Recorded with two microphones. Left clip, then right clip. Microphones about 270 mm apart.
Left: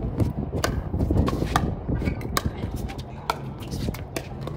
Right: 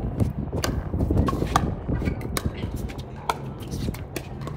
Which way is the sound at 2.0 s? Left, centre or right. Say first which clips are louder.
Left 2 dB; centre.